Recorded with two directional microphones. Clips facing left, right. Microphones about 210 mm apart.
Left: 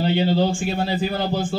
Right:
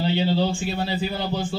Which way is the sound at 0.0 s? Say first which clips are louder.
Left 3 dB; 50° left (ahead or behind).